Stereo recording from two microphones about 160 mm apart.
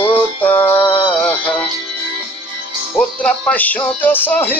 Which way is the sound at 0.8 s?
30° left (ahead or behind).